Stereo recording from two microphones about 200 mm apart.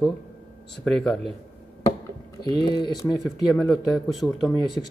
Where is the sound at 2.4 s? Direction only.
20° left (ahead or behind).